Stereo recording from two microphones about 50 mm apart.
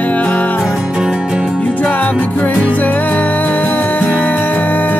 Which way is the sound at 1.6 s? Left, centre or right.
Left.